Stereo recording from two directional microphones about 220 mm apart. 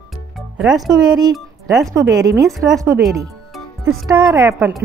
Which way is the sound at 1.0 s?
20° right (ahead or behind).